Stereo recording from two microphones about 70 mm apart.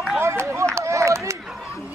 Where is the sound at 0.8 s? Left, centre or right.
Right.